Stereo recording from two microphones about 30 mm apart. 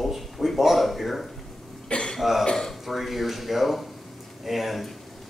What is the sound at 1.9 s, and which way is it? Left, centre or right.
Cough, left.